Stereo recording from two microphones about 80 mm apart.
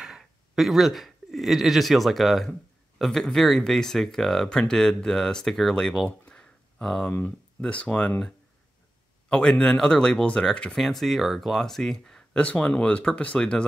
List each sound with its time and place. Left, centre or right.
0.0 s speech: centre
9.3 s speech: centre